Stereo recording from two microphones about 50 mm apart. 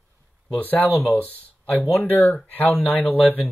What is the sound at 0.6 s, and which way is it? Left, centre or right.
Speech, left.